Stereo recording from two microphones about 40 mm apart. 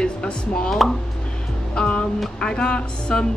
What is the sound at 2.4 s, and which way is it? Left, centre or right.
Speech, left.